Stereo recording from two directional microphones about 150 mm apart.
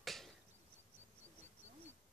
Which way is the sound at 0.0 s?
Centre (ahead or behind).